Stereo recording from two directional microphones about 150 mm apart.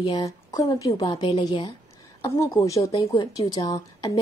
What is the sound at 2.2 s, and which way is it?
A woman's voice, 20° left (ahead or behind).